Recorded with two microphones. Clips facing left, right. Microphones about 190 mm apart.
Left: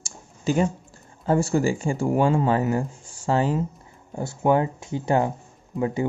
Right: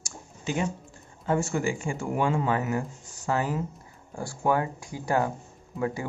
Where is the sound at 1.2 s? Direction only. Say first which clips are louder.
Left 5 dB; 35° left (ahead or behind).